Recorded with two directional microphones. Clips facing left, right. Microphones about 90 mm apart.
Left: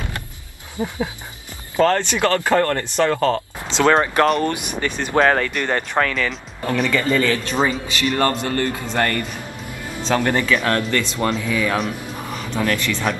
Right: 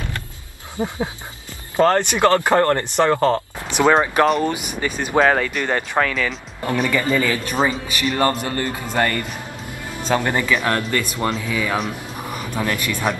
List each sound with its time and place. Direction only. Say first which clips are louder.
0.8 s speech: right 1 dB; 30° right (ahead or behind)
1.8 s speech: right 1 dB; 20° right (ahead or behind)
3.7 s speech: even; 10° right (ahead or behind)